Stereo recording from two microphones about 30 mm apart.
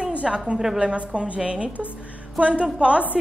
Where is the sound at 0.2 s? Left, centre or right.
Right.